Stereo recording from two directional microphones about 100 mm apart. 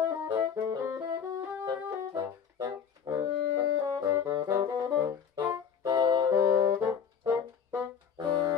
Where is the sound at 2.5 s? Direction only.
35° right (ahead or behind).